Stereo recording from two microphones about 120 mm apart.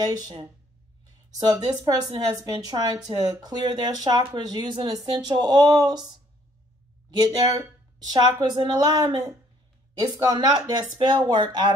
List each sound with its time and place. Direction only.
0.0 s speech: 35° right (ahead or behind)
1.5 s speech: 35° right (ahead or behind)